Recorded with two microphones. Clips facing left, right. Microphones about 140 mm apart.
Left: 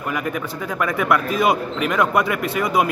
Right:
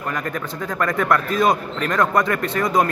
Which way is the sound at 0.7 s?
5° left (ahead or behind).